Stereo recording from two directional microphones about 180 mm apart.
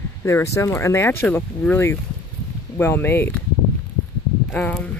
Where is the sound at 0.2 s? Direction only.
15° left (ahead or behind).